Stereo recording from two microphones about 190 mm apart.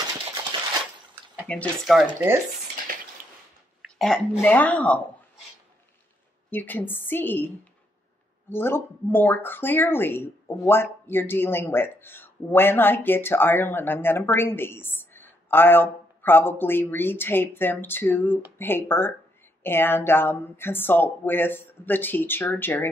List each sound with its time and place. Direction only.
0.5 s a sound: 25° right (ahead or behind)
1.5 s speech: 5° left (ahead or behind)
2.1 s speech: 15° right (ahead or behind)
4.0 s speech: 5° left (ahead or behind)
6.5 s speech: 10° left (ahead or behind)